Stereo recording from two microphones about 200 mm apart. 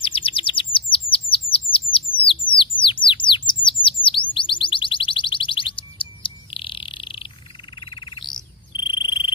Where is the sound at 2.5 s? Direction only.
25° left (ahead or behind).